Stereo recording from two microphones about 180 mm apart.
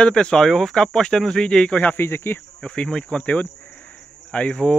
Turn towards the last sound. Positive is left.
turn(degrees=5)  # may be behind; listen again after turning